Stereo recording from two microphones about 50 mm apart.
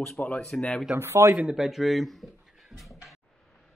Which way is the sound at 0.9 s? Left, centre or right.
Right.